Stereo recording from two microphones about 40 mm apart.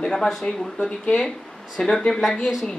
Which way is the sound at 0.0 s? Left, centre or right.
Centre.